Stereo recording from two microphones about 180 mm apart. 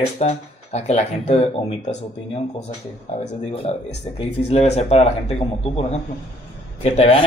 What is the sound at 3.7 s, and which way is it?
Speech, 35° left (ahead or behind).